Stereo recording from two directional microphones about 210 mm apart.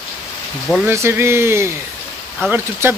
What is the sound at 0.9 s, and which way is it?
Speech, 10° right (ahead or behind).